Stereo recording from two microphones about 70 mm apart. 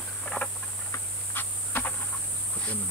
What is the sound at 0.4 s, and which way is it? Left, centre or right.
Patter, left.